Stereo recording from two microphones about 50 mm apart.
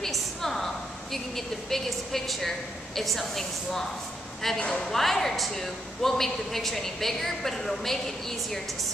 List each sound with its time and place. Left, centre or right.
0.0 s a sound: centre
1.1 s a man's voice: centre
4.6 s speech: centre
4.9 s a man's voice: centre